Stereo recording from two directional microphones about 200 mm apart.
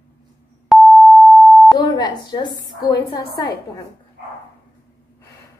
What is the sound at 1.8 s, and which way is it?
A woman's voice, 20° left (ahead or behind).